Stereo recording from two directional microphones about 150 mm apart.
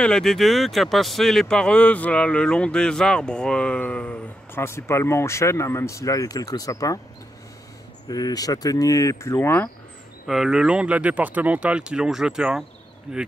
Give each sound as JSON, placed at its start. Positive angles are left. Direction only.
{"t": 0.0, "sound": "speech", "side_deg": 5}
{"t": 8.1, "sound": "speech", "side_deg": 25}
{"t": 10.2, "sound": "speech", "side_deg": 0}